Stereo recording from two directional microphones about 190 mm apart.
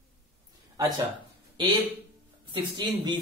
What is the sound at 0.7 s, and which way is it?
Speech, 20° right (ahead or behind).